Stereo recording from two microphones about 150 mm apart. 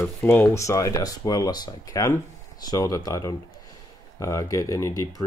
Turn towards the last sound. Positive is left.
turn(degrees=20)  # may be behind; listen again after turning